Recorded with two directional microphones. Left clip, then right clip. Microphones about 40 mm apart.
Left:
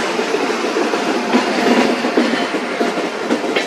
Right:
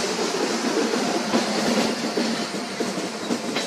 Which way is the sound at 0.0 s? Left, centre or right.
Left.